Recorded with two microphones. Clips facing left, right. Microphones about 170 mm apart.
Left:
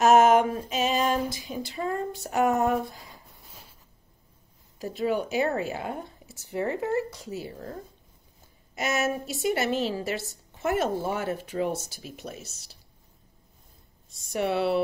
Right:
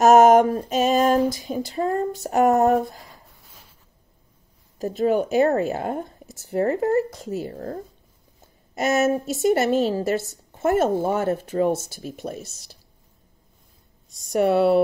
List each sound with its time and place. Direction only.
0.0 s female singing: 40° right (ahead or behind)
4.7 s a woman's voice: 45° right (ahead or behind)
14.3 s a woman's voice: 45° right (ahead or behind)